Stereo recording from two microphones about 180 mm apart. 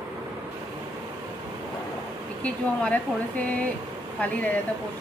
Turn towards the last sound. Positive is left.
turn(degrees=10)  # may be behind; listen again after turning